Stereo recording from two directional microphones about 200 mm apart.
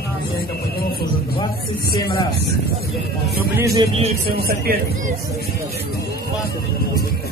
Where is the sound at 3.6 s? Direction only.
15° right (ahead or behind).